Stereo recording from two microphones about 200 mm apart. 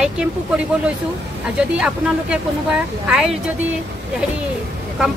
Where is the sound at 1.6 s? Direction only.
5° right (ahead or behind).